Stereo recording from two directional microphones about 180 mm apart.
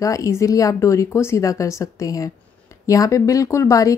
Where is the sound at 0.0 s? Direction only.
20° left (ahead or behind).